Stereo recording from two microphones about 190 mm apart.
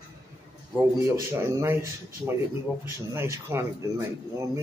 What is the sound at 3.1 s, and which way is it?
Speech, 15° right (ahead or behind).